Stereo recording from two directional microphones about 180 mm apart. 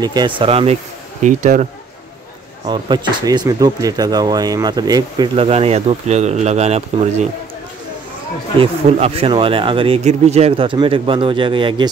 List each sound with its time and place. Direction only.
0.0 s speech: 25° right (ahead or behind); by 1.7 s 40° right (ahead or behind)
2.6 s speech: 25° right (ahead or behind)
8.5 s speech: 35° right (ahead or behind)